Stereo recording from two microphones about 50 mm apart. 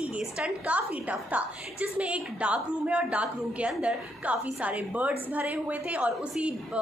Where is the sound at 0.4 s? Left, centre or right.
Right.